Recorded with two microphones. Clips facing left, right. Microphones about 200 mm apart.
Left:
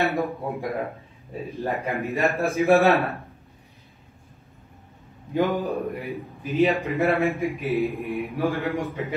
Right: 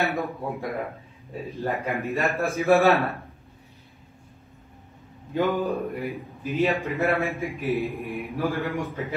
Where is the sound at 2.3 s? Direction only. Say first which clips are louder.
Left 1 dB; 15° left (ahead or behind).